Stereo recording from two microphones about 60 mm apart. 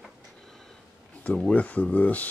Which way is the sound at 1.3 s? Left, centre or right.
Centre.